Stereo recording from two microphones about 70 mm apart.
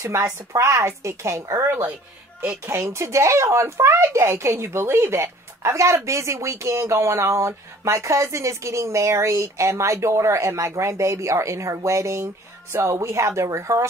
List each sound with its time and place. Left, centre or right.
0.0 s speech: right
2.6 s speech: right